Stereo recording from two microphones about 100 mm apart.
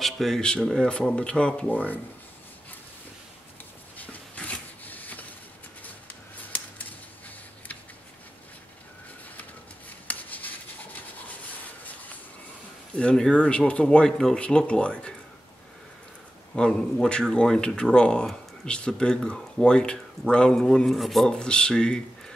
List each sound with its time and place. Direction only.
0.0 s speech: 5° left (ahead or behind)
4.0 s a sound: 15° left (ahead or behind)
9.4 s rub: 15° left (ahead or behind)
12.9 s speech: 10° left (ahead or behind)
16.5 s speech: 5° left (ahead or behind)